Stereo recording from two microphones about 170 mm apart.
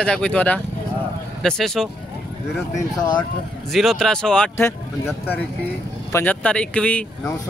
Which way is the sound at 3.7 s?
Centre (ahead or behind).